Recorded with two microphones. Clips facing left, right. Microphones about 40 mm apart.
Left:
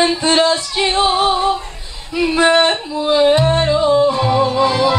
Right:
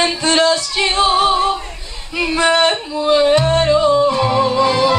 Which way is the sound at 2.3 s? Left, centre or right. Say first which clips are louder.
Left 1 dB; centre.